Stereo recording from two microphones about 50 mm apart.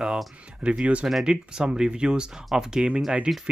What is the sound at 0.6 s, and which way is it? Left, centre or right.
Speech, right.